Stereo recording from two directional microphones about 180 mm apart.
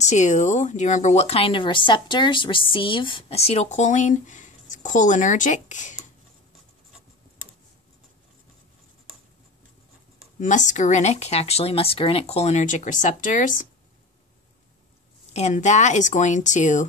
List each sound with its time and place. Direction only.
0.0 s speech: 40° left (ahead or behind)
10.4 s speech: 45° left (ahead or behind)
15.3 s speech: 40° left (ahead or behind)